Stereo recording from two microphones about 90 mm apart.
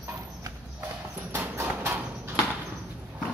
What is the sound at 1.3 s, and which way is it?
Clip-clop, 25° right (ahead or behind).